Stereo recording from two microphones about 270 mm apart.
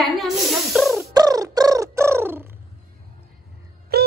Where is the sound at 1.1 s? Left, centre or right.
Centre.